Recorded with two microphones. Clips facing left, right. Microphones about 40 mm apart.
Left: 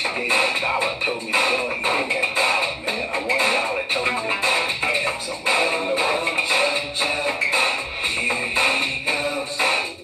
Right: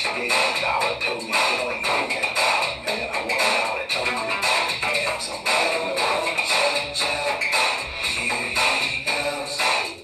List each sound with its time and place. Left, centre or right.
0.0 s music: left
2.1 s music: left
3.3 s a sound: left
4.0 s music: centre
4.9 s music: left